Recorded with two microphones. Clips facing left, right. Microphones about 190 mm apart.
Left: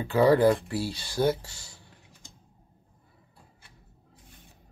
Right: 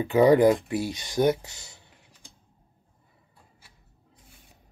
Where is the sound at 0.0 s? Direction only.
15° right (ahead or behind).